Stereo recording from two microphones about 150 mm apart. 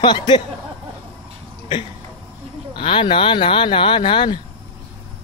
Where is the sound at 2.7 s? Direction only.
35° left (ahead or behind).